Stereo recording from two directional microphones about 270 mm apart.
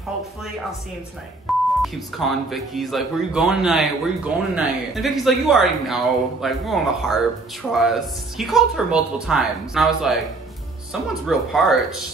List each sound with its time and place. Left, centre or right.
1.8 s speech: centre